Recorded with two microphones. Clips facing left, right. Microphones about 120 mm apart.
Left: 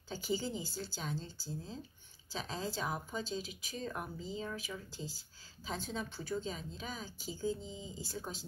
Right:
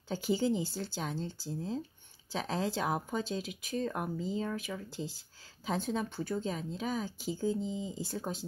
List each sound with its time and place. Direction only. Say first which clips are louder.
0.1 s speech: right 7 dB; 60° right (ahead or behind)